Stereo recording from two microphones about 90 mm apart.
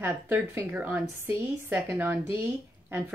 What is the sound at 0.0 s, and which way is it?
Speech, 25° right (ahead or behind).